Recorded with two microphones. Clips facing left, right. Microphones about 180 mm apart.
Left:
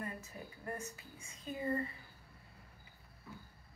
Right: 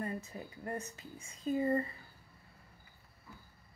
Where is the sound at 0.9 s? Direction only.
30° right (ahead or behind).